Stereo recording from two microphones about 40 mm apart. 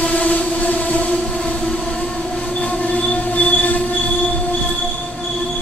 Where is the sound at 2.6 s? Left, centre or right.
Left.